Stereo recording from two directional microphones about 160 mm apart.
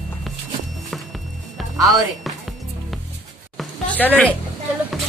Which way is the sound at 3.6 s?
10° left (ahead or behind).